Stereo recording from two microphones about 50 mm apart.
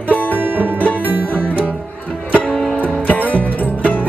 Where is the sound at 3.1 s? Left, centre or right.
Left.